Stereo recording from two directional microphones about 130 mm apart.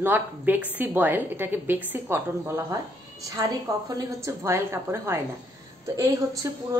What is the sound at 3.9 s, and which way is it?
A woman's voice, 25° right (ahead or behind).